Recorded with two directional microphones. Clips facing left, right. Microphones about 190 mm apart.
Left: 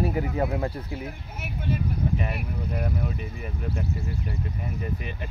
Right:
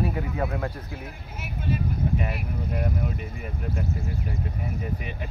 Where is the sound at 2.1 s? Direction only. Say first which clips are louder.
Right 1 dB; centre (ahead or behind).